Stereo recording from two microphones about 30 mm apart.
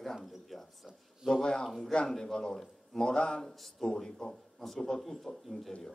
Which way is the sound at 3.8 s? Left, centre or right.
Left.